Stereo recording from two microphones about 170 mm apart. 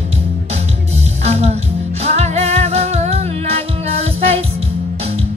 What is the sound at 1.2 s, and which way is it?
Music, 40° right (ahead or behind).